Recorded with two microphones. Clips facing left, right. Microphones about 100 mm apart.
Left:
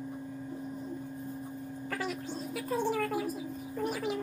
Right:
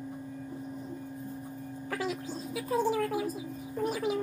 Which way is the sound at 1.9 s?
5° right (ahead or behind).